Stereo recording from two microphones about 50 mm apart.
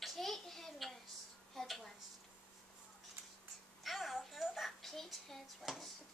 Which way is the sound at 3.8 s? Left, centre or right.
Centre.